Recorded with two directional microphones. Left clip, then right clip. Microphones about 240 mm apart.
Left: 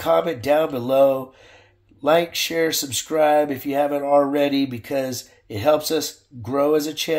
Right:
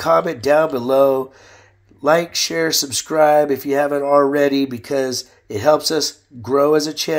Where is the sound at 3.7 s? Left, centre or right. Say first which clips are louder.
Right 3 dB; right.